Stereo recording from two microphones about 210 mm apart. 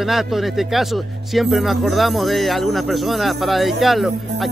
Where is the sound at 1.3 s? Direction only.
Centre (ahead or behind).